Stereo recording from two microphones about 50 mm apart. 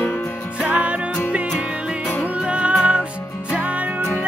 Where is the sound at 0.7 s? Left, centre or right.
Right.